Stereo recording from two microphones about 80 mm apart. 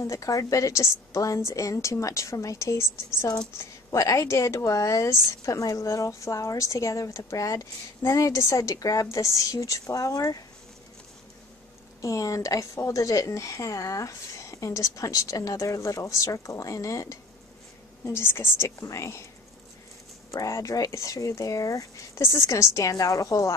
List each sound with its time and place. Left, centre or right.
0.0 s a woman's voice: left
12.0 s speech: left
18.0 s a woman's voice: left
20.2 s a woman's voice: left